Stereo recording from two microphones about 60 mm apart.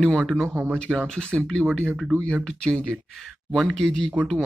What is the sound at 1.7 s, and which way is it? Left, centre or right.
Speech, left.